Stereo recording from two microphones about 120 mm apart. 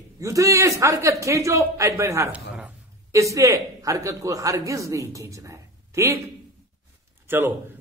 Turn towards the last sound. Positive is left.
turn(degrees=-20)  # may be behind; listen again after turning